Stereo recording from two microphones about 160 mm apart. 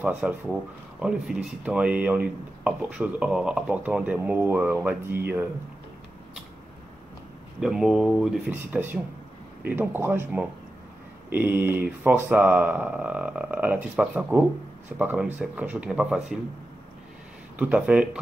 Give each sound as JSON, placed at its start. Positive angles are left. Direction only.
{"t": 0.0, "sound": "speech", "side_deg": -10}
{"t": 7.6, "sound": "speech", "side_deg": -5}
{"t": 8.5, "sound": "speech", "side_deg": -15}
{"t": 17.6, "sound": "speech", "side_deg": -10}